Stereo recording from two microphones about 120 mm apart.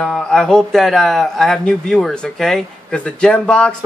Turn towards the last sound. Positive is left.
turn(degrees=10)  # may be behind; listen again after turning